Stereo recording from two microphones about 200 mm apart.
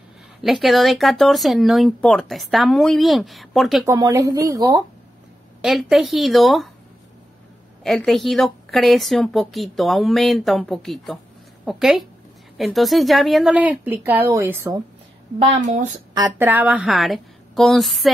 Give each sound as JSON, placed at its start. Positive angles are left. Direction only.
{"t": 0.4, "sound": "speech", "side_deg": 0}
{"t": 3.8, "sound": "a woman's voice", "side_deg": -15}
{"t": 5.6, "sound": "speech", "side_deg": 0}
{"t": 7.8, "sound": "speech", "side_deg": 0}
{"t": 15.3, "sound": "a woman's voice", "side_deg": -40}
{"t": 16.2, "sound": "speech", "side_deg": -15}